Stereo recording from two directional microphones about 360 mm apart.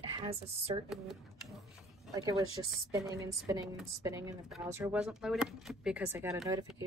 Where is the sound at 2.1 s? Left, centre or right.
Centre.